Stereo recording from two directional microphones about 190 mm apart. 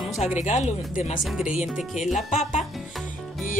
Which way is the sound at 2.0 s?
40° left (ahead or behind).